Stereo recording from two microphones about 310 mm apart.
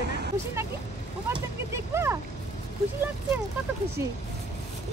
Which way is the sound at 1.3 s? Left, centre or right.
Centre.